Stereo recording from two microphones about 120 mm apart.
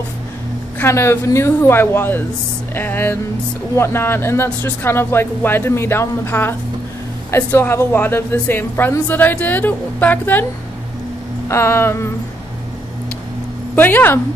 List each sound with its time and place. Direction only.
0.7 s a woman's voice: 20° left (ahead or behind)
11.4 s speech: 20° left (ahead or behind)
13.7 s a woman's voice: 15° left (ahead or behind)